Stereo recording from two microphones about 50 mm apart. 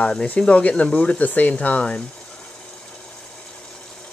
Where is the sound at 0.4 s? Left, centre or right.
Left.